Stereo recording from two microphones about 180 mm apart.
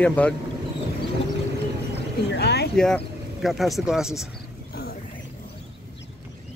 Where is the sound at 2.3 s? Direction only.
65° left (ahead or behind).